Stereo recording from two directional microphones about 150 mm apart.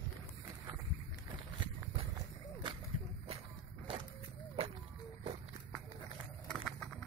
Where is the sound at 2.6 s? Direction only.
30° right (ahead or behind).